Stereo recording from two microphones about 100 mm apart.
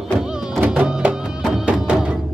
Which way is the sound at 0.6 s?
15° right (ahead or behind).